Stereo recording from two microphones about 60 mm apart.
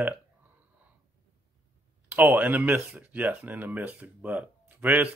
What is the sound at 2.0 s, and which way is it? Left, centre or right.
Speech, right.